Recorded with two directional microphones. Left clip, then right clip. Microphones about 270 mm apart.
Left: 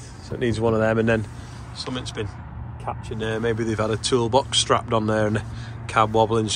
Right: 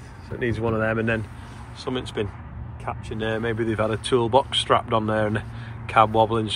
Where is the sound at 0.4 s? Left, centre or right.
Centre.